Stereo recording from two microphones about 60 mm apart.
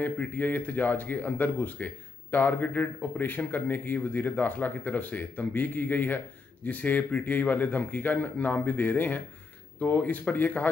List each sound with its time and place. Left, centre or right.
0.0 s speech: left